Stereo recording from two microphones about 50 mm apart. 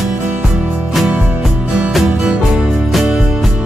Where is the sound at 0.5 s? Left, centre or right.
Right.